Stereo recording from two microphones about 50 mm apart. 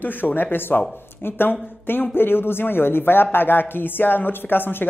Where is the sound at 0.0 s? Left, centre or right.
Left.